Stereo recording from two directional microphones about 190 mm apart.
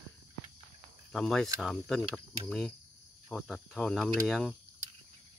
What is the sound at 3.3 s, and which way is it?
Cricket, centre (ahead or behind).